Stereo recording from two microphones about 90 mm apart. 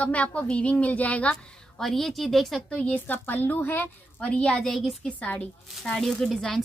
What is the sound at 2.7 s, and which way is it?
A woman's voice, 15° left (ahead or behind).